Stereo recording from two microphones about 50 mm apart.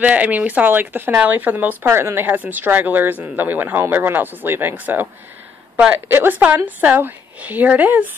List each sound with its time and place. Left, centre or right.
0.0 s a woman's voice: right
1.9 s speech: right
2.2 s a woman's voice: right
6.1 s a woman's voice: right